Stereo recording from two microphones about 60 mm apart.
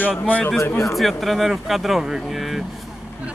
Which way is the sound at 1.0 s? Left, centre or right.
Centre.